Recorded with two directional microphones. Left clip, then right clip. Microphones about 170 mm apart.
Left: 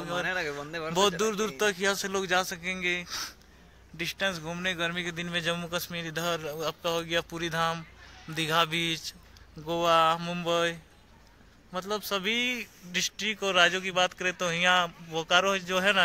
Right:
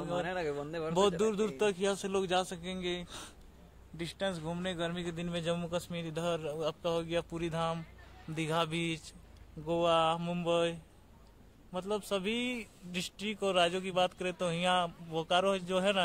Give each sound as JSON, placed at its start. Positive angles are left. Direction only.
{"t": 0.2, "sound": "speech", "side_deg": -20}
{"t": 0.9, "sound": "a man's voice", "side_deg": 0}